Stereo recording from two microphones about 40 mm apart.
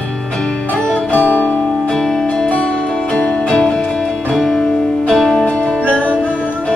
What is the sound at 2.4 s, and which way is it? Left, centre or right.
Music, left.